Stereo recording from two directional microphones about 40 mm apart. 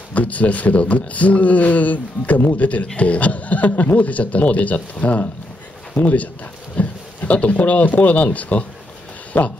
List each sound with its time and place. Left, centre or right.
0.1 s speech: left
9.3 s speech: left